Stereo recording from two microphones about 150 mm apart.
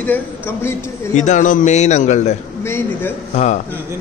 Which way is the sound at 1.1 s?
55° left (ahead or behind).